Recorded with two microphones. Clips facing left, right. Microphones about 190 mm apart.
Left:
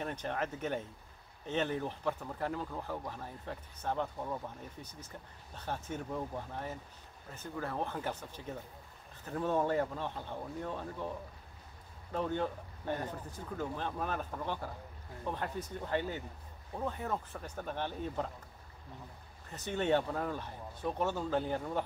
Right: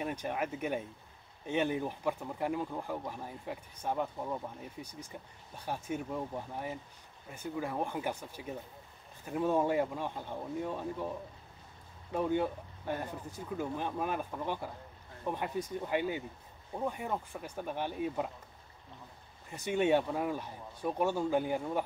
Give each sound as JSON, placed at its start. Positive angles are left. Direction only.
{"t": 0.0, "sound": "speech", "side_deg": -10}
{"t": 12.1, "sound": "speech", "side_deg": -10}
{"t": 19.5, "sound": "speech", "side_deg": -10}